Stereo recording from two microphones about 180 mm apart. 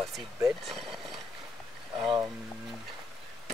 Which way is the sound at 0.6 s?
Centre (ahead or behind).